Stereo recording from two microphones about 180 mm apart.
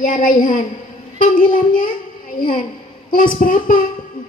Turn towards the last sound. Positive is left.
turn(degrees=50)  # may be behind; listen again after turning